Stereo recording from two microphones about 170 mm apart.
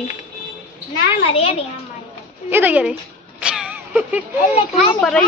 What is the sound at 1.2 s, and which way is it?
Speech, 35° left (ahead or behind).